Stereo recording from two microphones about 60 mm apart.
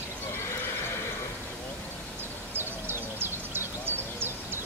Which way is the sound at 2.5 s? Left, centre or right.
Right.